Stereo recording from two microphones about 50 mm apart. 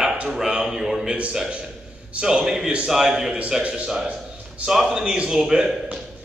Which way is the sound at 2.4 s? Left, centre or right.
Centre.